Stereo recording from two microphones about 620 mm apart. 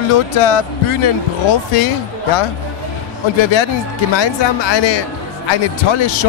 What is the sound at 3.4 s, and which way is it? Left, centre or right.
A man's voice, left.